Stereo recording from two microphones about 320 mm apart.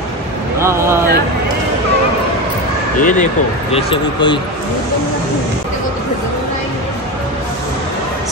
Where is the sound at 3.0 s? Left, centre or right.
Left.